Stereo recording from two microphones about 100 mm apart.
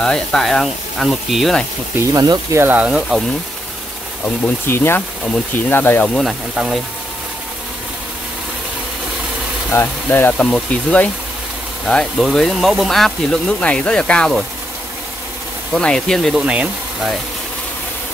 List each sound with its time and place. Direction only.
0.0 s speech: 5° left (ahead or behind)
2.1 s speech: 40° right (ahead or behind)
2.6 s speech: 15° right (ahead or behind)
4.6 s speech: 25° left (ahead or behind)
6.1 s speech: centre (ahead or behind)
9.7 s speech: 20° left (ahead or behind)
10.3 s speech: 10° left (ahead or behind)
15.7 s speech: 5° left (ahead or behind)
16.3 s speech: 10° right (ahead or behind)